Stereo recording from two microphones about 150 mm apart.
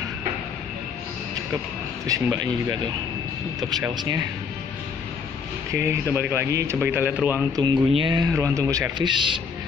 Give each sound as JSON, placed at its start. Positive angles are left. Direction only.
{"t": 2.0, "sound": "a man's voice", "side_deg": -20}
{"t": 3.7, "sound": "a man's voice", "side_deg": -25}
{"t": 6.1, "sound": "a man's voice", "side_deg": -15}
{"t": 7.5, "sound": "a man's voice", "side_deg": -30}
{"t": 8.3, "sound": "a man's voice", "side_deg": -20}